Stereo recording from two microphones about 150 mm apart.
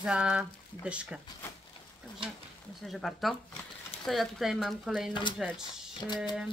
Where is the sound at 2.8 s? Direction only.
Centre (ahead or behind).